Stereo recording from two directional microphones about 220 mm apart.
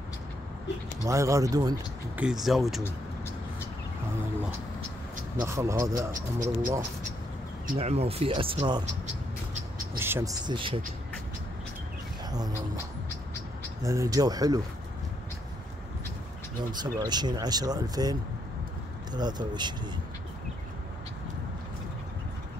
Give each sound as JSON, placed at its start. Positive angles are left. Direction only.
{"t": 1.0, "sound": "speech", "side_deg": -15}
{"t": 2.4, "sound": "speech", "side_deg": 0}
{"t": 5.4, "sound": "speech", "side_deg": -15}
{"t": 7.6, "sound": "speech", "side_deg": -30}
{"t": 9.0, "sound": "a sound", "side_deg": -30}
{"t": 9.9, "sound": "speech", "side_deg": -10}
{"t": 12.3, "sound": "speech", "side_deg": -15}
{"t": 13.8, "sound": "speech", "side_deg": -15}
{"t": 16.8, "sound": "speech", "side_deg": -20}
{"t": 19.1, "sound": "speech", "side_deg": -20}